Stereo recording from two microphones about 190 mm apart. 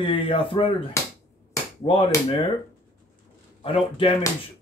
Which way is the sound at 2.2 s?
30° left (ahead or behind).